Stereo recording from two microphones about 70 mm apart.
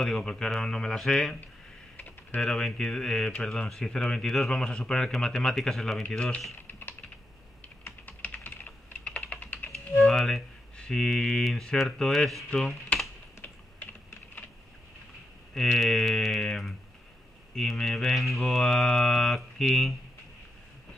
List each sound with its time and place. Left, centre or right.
0.0 s speech: centre
2.0 s typing: left
2.5 s speech: centre
6.7 s typing: left
9.7 s music: centre
12.5 s computer keyboard: centre
13.4 s typing: left
15.5 s speech: centre
16.4 s mantra: centre